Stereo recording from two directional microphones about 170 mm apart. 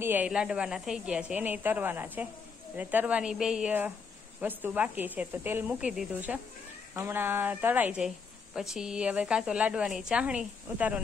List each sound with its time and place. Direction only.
0.0 s a woman's voice: 10° right (ahead or behind)